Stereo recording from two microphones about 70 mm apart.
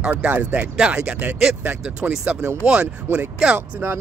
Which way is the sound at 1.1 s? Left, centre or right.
Right.